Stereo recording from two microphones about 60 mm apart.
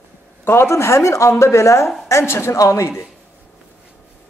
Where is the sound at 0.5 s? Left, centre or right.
Left.